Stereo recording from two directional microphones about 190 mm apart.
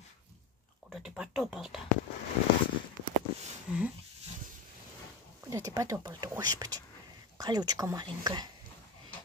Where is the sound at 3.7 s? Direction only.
5° right (ahead or behind).